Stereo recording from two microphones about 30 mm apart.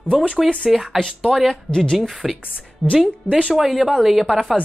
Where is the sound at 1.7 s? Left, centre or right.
Left.